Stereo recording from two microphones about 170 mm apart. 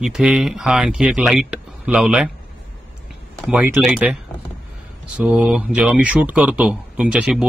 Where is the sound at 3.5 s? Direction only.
10° right (ahead or behind).